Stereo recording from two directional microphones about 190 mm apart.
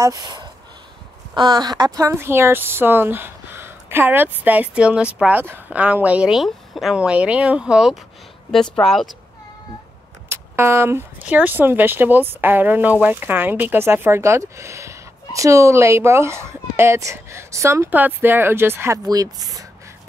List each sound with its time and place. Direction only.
0.0 s speech: 20° right (ahead or behind); by 9.1 s centre (ahead or behind)
10.3 s speech: 10° right (ahead or behind)